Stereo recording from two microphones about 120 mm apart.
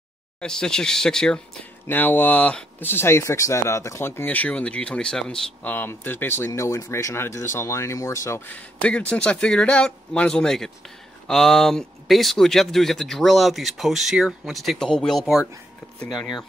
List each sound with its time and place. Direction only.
0.4 s speech: 5° left (ahead or behind)